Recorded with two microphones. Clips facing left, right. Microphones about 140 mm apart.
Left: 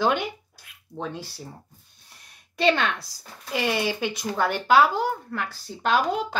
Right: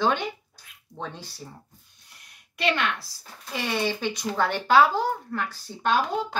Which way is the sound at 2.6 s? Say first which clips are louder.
Left 4 dB; 30° left (ahead or behind).